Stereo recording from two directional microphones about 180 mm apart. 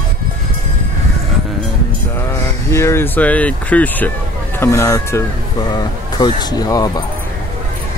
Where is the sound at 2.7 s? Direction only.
15° left (ahead or behind).